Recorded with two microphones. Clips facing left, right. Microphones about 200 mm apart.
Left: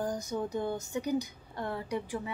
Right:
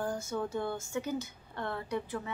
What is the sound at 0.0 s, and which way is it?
Speech, 15° left (ahead or behind).